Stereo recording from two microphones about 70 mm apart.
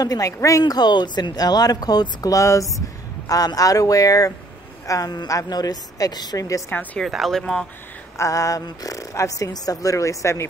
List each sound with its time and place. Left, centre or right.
0.0 s speech: left
0.7 s speech: left
6.7 s a woman's voice: left
7.1 s speech: centre
8.2 s speech: left